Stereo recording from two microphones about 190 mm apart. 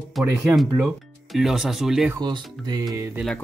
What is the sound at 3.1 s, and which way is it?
Speech, centre (ahead or behind).